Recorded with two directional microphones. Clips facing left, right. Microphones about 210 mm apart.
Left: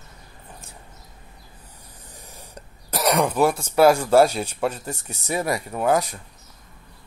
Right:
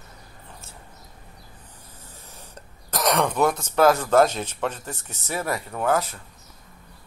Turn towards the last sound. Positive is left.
turn(degrees=15)  # may be behind; listen again after turning